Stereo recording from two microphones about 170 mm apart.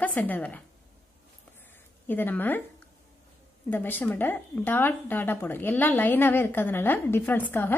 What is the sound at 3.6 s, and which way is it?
Speech, 10° left (ahead or behind).